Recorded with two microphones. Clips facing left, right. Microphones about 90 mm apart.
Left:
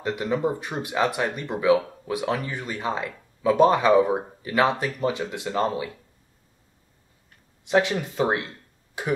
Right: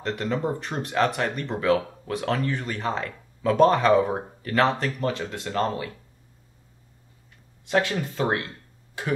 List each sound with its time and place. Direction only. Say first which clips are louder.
0.0 s speech: left 2 dB; 10° left (ahead or behind)
7.6 s speech: left 2 dB; 20° left (ahead or behind)